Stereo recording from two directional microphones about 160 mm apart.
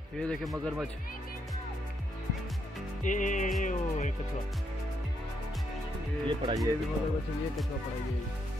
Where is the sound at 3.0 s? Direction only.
55° left (ahead or behind).